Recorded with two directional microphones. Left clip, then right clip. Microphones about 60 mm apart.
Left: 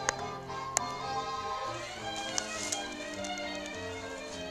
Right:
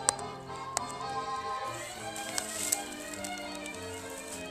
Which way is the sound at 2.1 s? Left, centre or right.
Centre.